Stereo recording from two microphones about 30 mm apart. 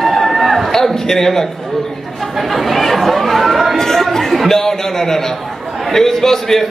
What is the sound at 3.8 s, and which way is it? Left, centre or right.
A man's voice, centre.